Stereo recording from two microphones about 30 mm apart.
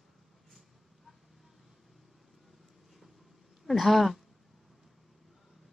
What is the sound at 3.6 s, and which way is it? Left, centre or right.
Speech, centre.